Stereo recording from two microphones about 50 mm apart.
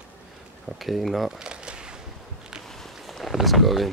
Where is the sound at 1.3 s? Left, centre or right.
Centre.